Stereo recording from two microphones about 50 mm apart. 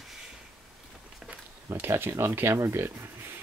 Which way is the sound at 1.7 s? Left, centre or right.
Right.